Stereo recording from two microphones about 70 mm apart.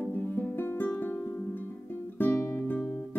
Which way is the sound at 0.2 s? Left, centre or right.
Left.